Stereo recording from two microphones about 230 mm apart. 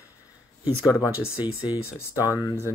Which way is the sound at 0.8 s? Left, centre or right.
Centre.